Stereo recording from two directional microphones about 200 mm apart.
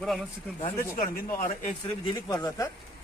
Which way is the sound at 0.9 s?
40° left (ahead or behind).